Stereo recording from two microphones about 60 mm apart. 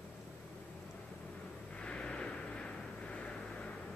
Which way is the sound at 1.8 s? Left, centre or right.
Centre.